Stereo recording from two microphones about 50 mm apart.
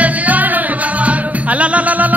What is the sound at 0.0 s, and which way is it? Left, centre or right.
Music, right.